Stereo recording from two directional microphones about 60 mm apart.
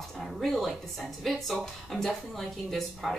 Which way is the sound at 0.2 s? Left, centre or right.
Centre.